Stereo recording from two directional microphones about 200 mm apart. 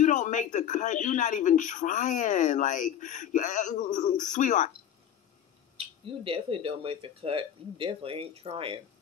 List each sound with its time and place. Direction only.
0.0 s speech: 40° left (ahead or behind)
5.8 s speech: 25° right (ahead or behind)